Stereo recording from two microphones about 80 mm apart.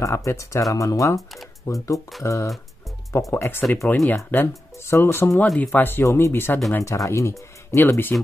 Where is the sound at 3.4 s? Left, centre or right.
Left.